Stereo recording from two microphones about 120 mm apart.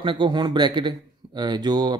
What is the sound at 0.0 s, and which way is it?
Speech, 45° right (ahead or behind).